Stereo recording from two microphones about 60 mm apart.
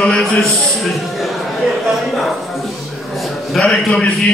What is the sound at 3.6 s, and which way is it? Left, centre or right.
Speech, centre.